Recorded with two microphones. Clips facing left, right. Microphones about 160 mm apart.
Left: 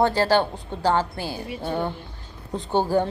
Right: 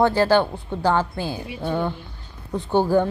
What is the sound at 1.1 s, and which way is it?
Speech, 15° right (ahead or behind).